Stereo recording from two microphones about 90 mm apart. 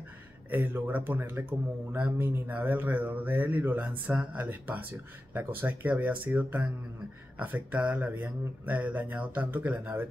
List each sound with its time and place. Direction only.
0.5 s speech: 20° right (ahead or behind)